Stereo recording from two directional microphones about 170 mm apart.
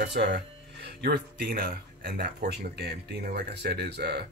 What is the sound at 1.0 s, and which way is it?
Speech, 60° right (ahead or behind).